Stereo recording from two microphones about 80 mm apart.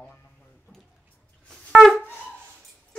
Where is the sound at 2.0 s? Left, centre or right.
Left.